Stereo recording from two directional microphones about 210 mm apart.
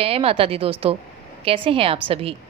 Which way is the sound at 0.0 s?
25° right (ahead or behind).